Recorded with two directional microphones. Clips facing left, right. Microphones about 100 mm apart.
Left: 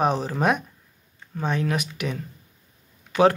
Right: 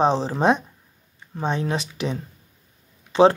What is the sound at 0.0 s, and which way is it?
Speech, 30° right (ahead or behind).